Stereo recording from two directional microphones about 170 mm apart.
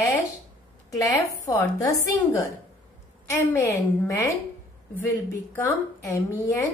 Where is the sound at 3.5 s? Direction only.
15° left (ahead or behind).